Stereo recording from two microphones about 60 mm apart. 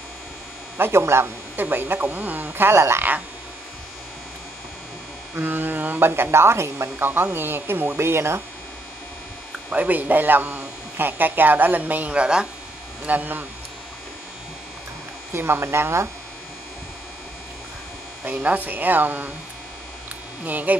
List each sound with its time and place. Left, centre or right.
0.7 s a man's voice: right
5.3 s a man's voice: right
7.1 s a man's voice: right
9.7 s a man's voice: right
13.0 s speech: right
15.3 s speech: right
18.2 s speech: right
20.4 s speech: right